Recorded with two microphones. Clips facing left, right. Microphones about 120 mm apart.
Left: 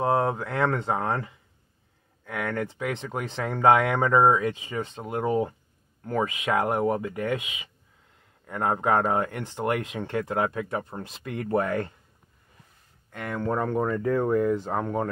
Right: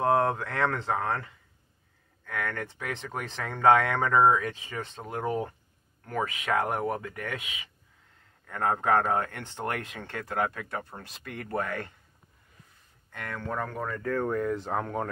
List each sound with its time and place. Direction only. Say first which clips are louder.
0.0 s speech: left 1 dB; 5° left (ahead or behind); by 11.6 s 20° left (ahead or behind)
13.4 s speech: left 8 dB; 30° left (ahead or behind); by 15.0 s 5° left (ahead or behind)